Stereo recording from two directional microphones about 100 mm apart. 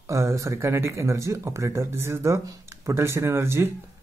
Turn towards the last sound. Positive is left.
turn(degrees=-25)  # may be behind; listen again after turning